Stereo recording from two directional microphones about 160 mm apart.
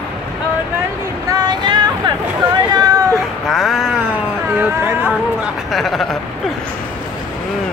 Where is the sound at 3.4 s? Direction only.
Centre (ahead or behind).